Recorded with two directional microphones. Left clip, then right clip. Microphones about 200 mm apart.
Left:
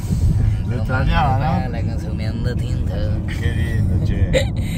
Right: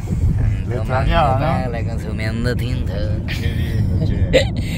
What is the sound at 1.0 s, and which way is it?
Speech, 25° right (ahead or behind).